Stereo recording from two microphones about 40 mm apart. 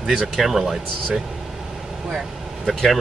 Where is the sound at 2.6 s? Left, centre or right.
Centre.